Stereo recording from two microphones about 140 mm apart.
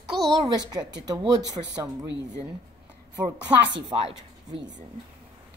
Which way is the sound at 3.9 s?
40° right (ahead or behind).